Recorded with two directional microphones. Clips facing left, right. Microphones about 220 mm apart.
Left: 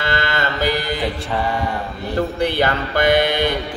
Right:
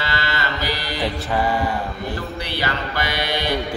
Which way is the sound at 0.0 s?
50° left (ahead or behind).